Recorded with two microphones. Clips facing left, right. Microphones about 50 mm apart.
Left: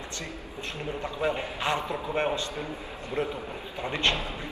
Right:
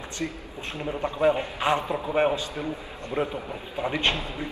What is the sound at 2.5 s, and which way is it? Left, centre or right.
Speech, right.